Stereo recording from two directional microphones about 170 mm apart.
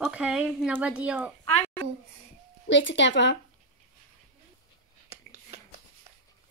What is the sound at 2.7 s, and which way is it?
Speech, 90° left.